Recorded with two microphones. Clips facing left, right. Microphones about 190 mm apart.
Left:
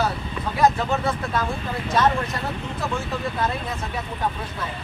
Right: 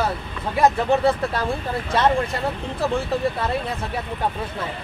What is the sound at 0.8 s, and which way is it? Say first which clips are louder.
Speech: right 6 dB; 35° right (ahead or behind).